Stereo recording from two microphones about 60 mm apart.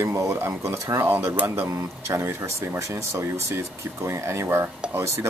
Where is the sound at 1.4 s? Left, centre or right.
Right.